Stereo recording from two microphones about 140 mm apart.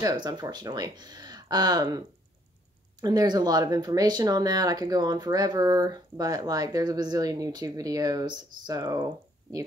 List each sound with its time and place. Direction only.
0.0 s speech: 30° right (ahead or behind)